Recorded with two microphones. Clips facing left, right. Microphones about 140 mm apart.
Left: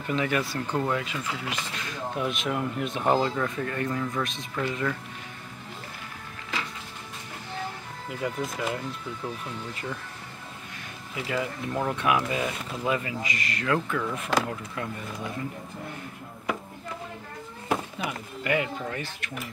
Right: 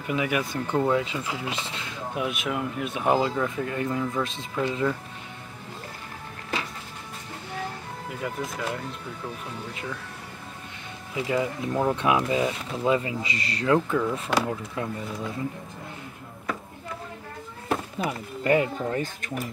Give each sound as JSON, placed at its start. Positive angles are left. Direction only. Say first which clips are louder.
{"t": 0.0, "sound": "speech", "louder": "even", "side_deg": -10}
{"t": 2.1, "sound": "speech", "louder": "right 1 dB", "side_deg": -5}
{"t": 8.1, "sound": "speech", "louder": "left 2 dB", "side_deg": 0}
{"t": 11.1, "sound": "speech", "louder": "right 4 dB", "side_deg": -20}
{"t": 11.9, "sound": "speech", "louder": "right 1 dB", "side_deg": -30}
{"t": 14.4, "sound": "speech", "louder": "right 3 dB", "side_deg": -15}
{"t": 17.9, "sound": "speech", "louder": "right 4 dB", "side_deg": -35}